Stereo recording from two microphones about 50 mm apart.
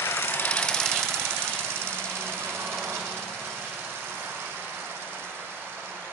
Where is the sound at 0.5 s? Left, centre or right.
Centre.